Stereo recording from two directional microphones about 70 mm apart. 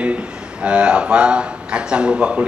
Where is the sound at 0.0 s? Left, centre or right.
Centre.